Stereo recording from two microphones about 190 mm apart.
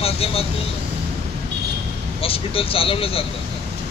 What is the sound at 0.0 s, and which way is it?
Vehicle, 30° left (ahead or behind).